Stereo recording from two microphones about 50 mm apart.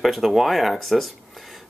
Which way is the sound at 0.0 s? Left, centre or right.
Centre.